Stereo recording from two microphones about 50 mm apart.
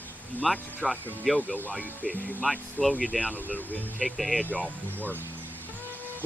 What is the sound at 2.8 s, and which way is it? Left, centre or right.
Speech, left.